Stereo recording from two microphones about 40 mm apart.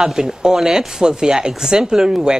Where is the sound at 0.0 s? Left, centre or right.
Centre.